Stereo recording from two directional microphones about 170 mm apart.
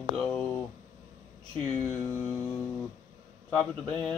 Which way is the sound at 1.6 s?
10° left (ahead or behind).